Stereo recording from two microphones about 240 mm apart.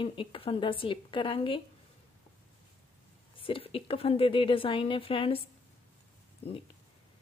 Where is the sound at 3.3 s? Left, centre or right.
Left.